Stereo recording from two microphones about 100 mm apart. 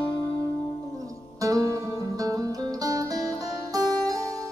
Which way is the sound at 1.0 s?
35° right (ahead or behind).